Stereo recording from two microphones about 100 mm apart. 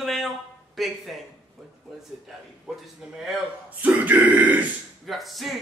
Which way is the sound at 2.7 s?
Centre (ahead or behind).